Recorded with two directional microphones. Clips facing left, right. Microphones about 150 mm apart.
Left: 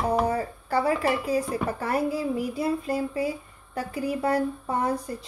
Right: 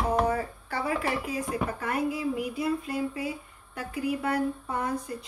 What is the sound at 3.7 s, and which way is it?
Speech, 35° left (ahead or behind).